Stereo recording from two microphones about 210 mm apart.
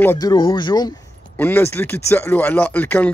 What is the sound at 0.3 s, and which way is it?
A man's voice, 20° left (ahead or behind).